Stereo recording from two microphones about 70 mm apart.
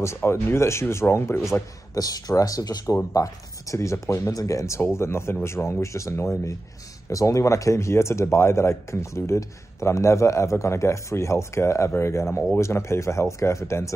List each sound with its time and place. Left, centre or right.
0.2 s speech: left
2.0 s speech: left
3.7 s speech: left